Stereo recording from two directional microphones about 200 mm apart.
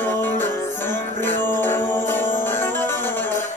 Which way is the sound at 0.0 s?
10° left (ahead or behind).